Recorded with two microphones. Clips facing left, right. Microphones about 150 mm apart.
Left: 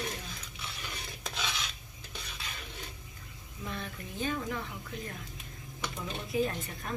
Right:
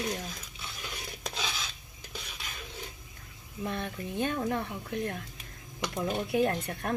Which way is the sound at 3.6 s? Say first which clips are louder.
Right 5 dB; 55° right (ahead or behind).